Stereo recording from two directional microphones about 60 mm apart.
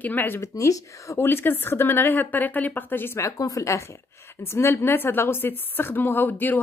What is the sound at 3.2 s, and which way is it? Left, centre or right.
Speech, left.